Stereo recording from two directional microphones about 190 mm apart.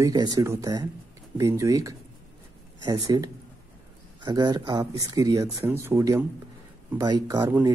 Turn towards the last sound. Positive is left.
turn(degrees=-20)  # may be behind; listen again after turning